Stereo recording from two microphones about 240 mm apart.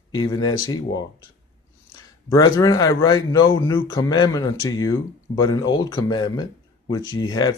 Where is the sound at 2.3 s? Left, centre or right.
Centre.